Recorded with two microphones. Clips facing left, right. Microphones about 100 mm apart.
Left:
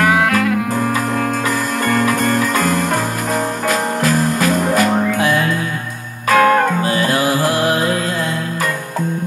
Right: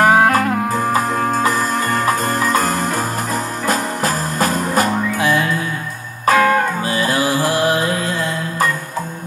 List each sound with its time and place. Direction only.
0.0 s music: 35° right (ahead or behind)
2.0 s music: 35° right (ahead or behind)
6.3 s music: 50° left (ahead or behind)
7.1 s music: 25° left (ahead or behind)
7.4 s music: 25° right (ahead or behind)